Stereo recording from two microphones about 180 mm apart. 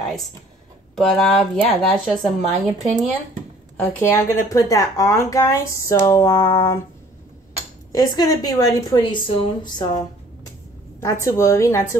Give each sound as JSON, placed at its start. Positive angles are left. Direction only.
{"t": 0.9, "sound": "speech", "side_deg": 5}
{"t": 4.0, "sound": "speech", "side_deg": 15}
{"t": 7.9, "sound": "a woman's voice", "side_deg": 20}